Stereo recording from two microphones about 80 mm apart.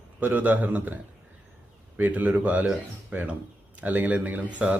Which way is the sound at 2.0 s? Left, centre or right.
Right.